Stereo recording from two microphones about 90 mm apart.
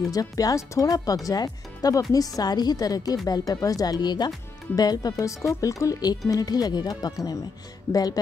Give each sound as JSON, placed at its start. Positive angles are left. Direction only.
{"t": 0.1, "sound": "speech", "side_deg": 40}
{"t": 5.2, "sound": "speech", "side_deg": 35}